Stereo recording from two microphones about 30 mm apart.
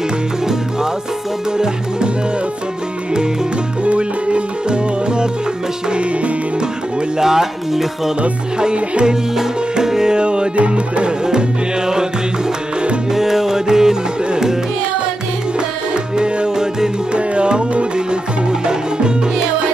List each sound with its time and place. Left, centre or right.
3.8 s music: right
7.2 s speech: centre
8.7 s music: right
9.8 s tabla: centre
10.1 s music: right
10.5 s music: right
13.1 s music: centre
17.1 s music: right